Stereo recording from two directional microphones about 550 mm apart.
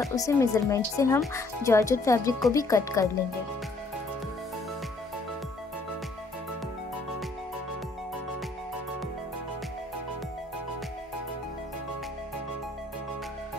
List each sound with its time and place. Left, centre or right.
0.0 s speech: centre